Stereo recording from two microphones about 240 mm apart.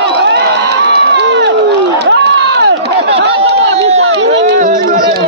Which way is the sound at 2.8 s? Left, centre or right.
Right.